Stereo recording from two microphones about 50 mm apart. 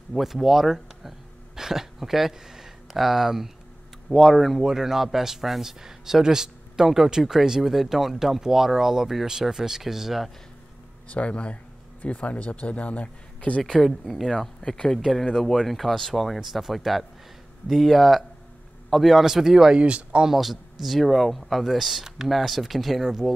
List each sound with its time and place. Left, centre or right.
0.1 s speech: centre
11.1 s a man's voice: left
13.6 s speech: centre
19.7 s speech: right
20.2 s speech: centre